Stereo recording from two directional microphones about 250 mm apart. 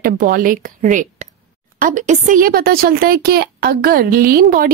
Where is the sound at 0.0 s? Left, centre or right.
Right.